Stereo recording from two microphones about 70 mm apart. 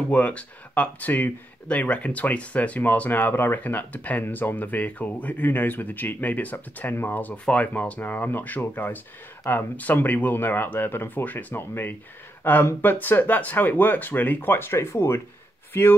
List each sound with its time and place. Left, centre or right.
0.1 s speech: centre